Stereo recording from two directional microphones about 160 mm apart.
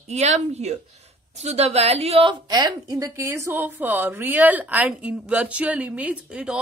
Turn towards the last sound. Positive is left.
turn(degrees=-5)  # may be behind; listen again after turning